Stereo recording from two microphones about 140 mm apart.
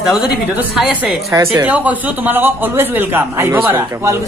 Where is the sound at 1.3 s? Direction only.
20° right (ahead or behind).